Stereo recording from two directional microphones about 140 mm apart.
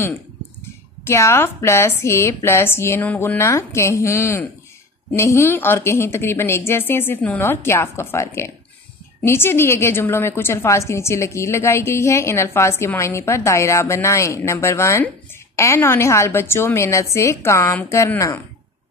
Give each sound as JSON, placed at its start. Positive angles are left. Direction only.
{"t": 1.0, "sound": "a woman's voice", "side_deg": 20}